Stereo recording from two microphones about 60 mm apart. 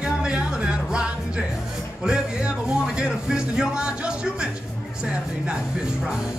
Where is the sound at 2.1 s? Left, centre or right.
Centre.